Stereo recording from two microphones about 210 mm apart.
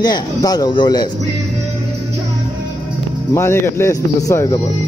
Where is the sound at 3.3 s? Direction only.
10° left (ahead or behind).